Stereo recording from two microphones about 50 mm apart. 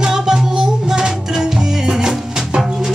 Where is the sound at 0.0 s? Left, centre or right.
Centre.